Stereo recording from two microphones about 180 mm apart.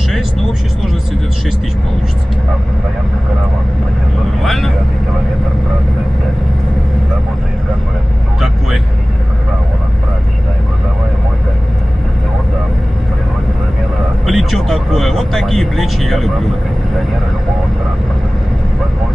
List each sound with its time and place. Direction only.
4.4 s vehicle: centre (ahead or behind)
14.2 s vehicle: centre (ahead or behind)